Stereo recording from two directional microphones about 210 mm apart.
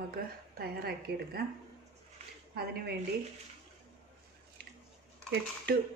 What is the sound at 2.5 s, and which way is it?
Speech, 50° right (ahead or behind).